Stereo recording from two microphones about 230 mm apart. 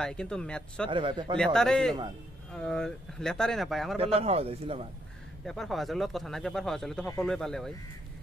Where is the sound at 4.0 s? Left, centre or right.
Right.